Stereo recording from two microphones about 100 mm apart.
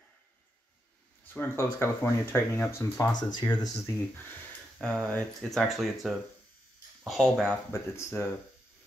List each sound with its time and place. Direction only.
1.3 s speech: 20° left (ahead or behind)
3.1 s speech: 45° left (ahead or behind)
5.0 s speech: 5° left (ahead or behind)
7.7 s speech: 25° left (ahead or behind)